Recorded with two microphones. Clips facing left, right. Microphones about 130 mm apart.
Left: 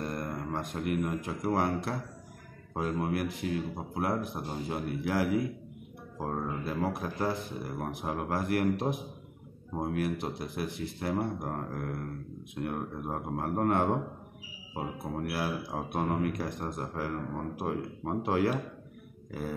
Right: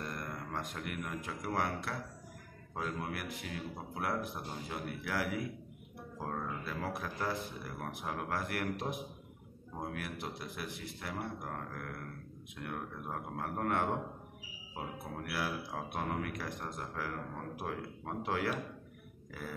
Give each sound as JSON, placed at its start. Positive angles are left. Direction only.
{"t": 0.0, "sound": "speech", "side_deg": 30}